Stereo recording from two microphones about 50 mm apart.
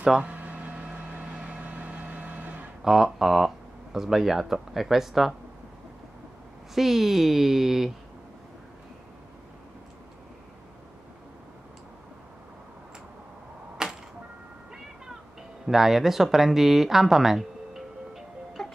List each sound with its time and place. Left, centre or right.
0.2 s a sound: right
0.9 s vehicle: right
2.8 s speech: centre
6.7 s speech: centre
13.8 s music: centre
15.6 s speech: centre